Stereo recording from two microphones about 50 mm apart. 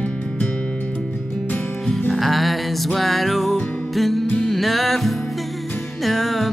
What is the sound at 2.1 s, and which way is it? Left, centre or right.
Music, centre.